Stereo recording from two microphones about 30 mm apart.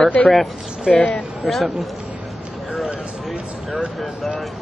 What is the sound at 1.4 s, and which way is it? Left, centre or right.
Speech, centre.